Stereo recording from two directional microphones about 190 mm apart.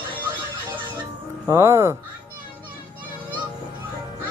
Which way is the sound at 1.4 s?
15° right (ahead or behind).